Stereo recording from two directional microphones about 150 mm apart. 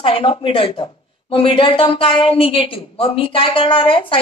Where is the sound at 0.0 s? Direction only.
35° left (ahead or behind).